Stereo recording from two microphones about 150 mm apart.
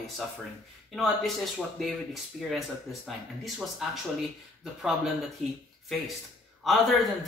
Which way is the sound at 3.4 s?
Centre (ahead or behind).